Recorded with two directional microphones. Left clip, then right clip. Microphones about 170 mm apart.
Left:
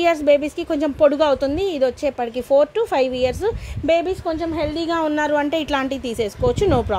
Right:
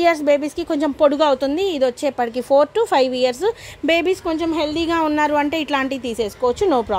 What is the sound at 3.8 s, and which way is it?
Speech, 25° right (ahead or behind).